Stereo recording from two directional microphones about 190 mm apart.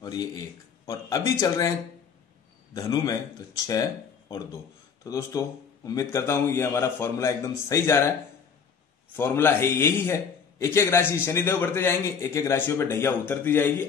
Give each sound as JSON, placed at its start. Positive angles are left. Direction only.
{"t": 0.8, "sound": "a man's voice", "side_deg": 20}
{"t": 2.7, "sound": "a man's voice", "side_deg": 20}
{"t": 5.0, "sound": "a man's voice", "side_deg": 15}
{"t": 9.1, "sound": "a man's voice", "side_deg": 10}